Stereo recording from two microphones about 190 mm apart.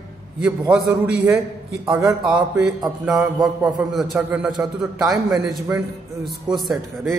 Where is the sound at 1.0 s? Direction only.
15° right (ahead or behind).